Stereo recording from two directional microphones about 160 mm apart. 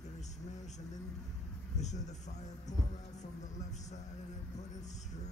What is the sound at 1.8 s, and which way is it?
Speech, 45° left (ahead or behind).